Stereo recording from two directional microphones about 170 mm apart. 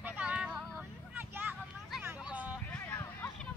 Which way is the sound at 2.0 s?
10° right (ahead or behind).